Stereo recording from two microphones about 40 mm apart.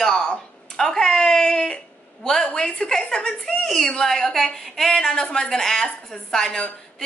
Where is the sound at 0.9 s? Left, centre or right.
Centre.